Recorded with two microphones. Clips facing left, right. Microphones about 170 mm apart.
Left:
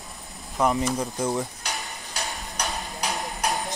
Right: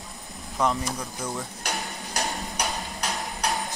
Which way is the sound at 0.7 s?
20° left (ahead or behind).